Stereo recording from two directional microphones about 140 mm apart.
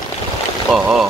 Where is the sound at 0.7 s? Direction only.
5° right (ahead or behind).